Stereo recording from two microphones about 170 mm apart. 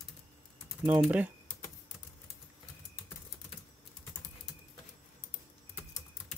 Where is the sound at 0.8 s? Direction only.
10° right (ahead or behind).